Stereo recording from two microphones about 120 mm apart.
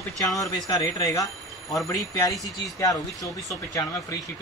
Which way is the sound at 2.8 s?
30° left (ahead or behind).